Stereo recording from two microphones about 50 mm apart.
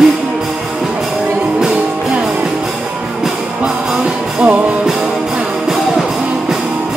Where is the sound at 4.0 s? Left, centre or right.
Right.